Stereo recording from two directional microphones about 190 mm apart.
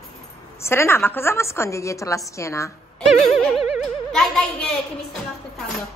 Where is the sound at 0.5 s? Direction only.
15° left (ahead or behind).